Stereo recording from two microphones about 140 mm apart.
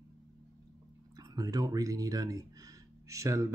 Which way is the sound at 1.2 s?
25° right (ahead or behind).